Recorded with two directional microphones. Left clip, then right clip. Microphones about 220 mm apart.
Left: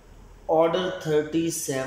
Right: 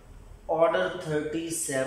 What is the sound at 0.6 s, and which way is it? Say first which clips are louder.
Speech: left 1 dB; 15° left (ahead or behind).